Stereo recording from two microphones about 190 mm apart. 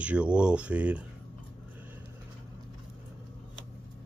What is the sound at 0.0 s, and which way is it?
Speech, 5° right (ahead or behind).